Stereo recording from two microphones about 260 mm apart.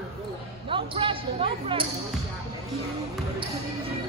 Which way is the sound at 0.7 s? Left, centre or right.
Centre.